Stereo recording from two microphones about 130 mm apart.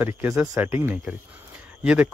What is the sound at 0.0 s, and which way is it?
Speech, 15° right (ahead or behind).